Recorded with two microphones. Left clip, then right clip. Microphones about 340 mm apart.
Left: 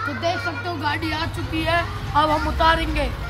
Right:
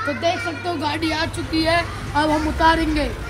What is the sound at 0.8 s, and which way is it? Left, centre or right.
Speech, centre.